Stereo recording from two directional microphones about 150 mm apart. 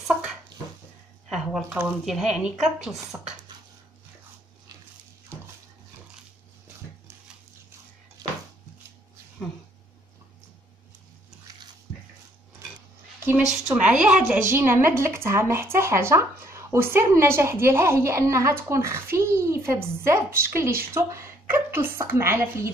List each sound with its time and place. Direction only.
0.0 s a sound: centre (ahead or behind)
2.0 s speech: centre (ahead or behind)
5.3 s dog: 15° right (ahead or behind)
8.2 s a sound: 25° right (ahead or behind)
12.6 s cutlery: 20° right (ahead or behind)
13.5 s a woman's voice: 5° right (ahead or behind)